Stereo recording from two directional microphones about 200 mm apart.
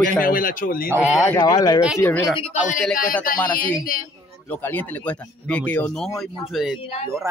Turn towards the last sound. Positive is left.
turn(degrees=30)  # may be behind; listen again after turning